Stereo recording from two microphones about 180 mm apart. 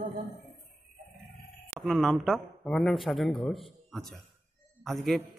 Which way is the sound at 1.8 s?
Centre (ahead or behind).